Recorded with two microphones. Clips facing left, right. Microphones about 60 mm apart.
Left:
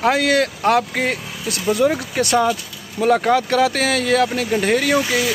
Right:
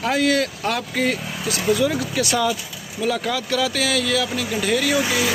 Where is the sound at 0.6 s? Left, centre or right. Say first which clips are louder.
Left 5 dB; left.